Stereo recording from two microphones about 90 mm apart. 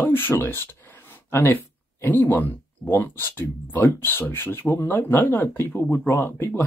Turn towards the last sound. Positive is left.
turn(degrees=25)  # may be behind; listen again after turning